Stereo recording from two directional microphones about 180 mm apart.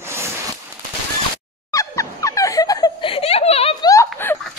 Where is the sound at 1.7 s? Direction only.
15° left (ahead or behind); by 3.7 s 35° left (ahead or behind).